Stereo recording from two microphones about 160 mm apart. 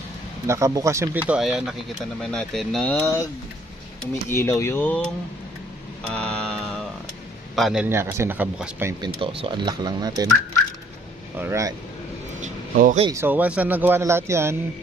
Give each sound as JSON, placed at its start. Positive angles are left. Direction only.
{"t": 0.5, "sound": "speech", "side_deg": -20}
{"t": 4.3, "sound": "speech", "side_deg": 15}
{"t": 6.0, "sound": "a sound", "side_deg": 5}
{"t": 7.5, "sound": "a man's voice", "side_deg": 0}
{"t": 7.8, "sound": "speech", "side_deg": -15}
{"t": 9.4, "sound": "speech", "side_deg": -30}
{"t": 11.3, "sound": "speech", "side_deg": -15}
{"t": 12.4, "sound": "a sound", "side_deg": -60}
{"t": 13.1, "sound": "speech", "side_deg": -15}